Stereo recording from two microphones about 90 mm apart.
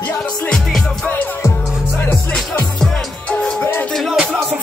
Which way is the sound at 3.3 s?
15° left (ahead or behind).